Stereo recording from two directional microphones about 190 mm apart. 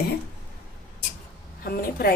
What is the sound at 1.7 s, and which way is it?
Speech, 55° left (ahead or behind).